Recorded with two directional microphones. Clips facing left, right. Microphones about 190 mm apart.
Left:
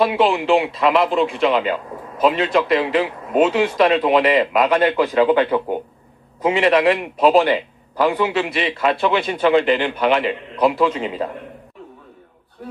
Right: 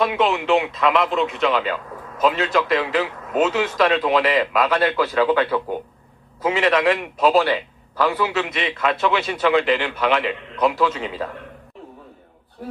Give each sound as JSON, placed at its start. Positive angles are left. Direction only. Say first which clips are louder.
{"t": 0.0, "sound": "speech", "louder": "left 3 dB", "side_deg": 30}
{"t": 1.6, "sound": "speech", "louder": "left 3 dB", "side_deg": 20}
{"t": 6.4, "sound": "speech", "louder": "left 3 dB", "side_deg": 30}
{"t": 7.3, "sound": "a man's voice", "louder": "left 3 dB", "side_deg": 20}
{"t": 11.1, "sound": "a man's voice", "louder": "left 4 dB", "side_deg": 15}